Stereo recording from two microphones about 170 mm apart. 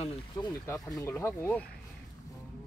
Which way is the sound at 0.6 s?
15° left (ahead or behind).